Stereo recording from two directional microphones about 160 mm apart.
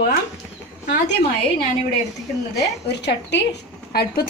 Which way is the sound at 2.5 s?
90° left.